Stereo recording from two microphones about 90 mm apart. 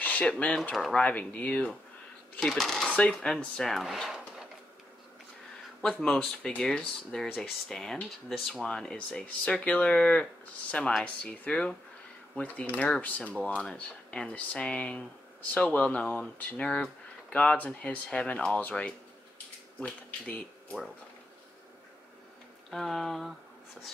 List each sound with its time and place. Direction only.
0.0 s a sound: 15° left (ahead or behind)
0.3 s speech: 5° left (ahead or behind)
1.0 s speech: 15° left (ahead or behind)
2.4 s speech: 5° left (ahead or behind)
5.8 s speech: 5° left (ahead or behind)
22.7 s speech: 5° left (ahead or behind)